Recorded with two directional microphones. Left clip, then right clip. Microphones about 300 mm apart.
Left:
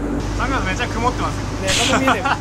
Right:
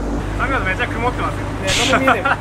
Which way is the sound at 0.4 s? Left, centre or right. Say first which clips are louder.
Right 3 dB; centre.